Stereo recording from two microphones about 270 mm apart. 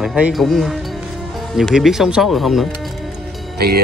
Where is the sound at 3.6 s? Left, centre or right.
Right.